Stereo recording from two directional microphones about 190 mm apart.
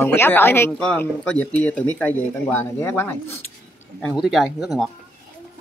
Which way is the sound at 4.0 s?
Centre (ahead or behind).